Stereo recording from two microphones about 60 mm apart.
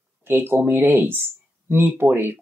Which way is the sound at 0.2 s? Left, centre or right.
Right.